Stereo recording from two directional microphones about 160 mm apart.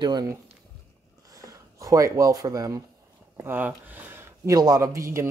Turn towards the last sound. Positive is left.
turn(degrees=-20)  # may be behind; listen again after turning